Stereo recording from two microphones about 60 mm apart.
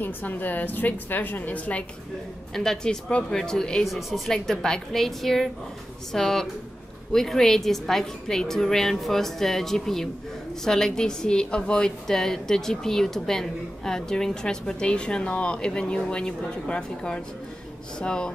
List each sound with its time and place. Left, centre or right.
0.0 s a woman's voice: left
2.5 s a woman's voice: centre
3.8 s a woman's voice: centre